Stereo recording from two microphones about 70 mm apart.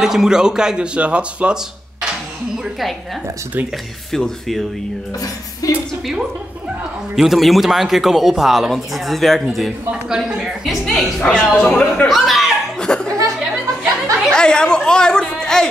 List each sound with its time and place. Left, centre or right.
0.0 s speech: centre
4.1 s speech: centre
5.6 s a woman's voice: left
7.2 s a man's voice: centre; by 12.1 s left
12.1 s speech: centre
12.7 s laughter: centre
14.3 s a sound: centre